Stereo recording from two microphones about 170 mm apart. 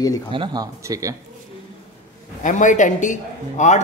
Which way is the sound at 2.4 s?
45° left (ahead or behind).